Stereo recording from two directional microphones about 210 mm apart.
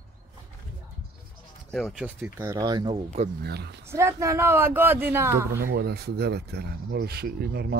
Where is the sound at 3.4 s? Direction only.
50° right (ahead or behind).